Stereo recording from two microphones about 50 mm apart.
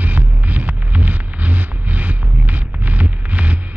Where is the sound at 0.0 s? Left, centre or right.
Right.